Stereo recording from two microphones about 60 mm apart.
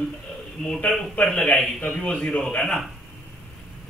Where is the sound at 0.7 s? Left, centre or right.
Centre.